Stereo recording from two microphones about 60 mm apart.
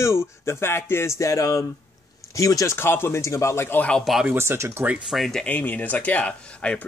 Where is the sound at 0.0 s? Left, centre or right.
Left.